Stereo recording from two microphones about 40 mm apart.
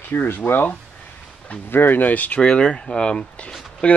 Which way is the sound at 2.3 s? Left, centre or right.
Left.